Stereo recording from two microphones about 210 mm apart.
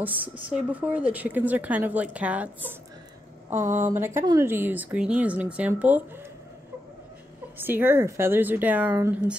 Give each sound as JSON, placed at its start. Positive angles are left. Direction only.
{"t": 0.0, "sound": "speech", "side_deg": -10}
{"t": 3.5, "sound": "speech", "side_deg": -35}
{"t": 3.8, "sound": "speech", "side_deg": -10}
{"t": 7.5, "sound": "speech", "side_deg": -10}